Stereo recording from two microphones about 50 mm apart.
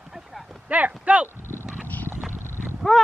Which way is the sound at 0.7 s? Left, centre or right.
Right.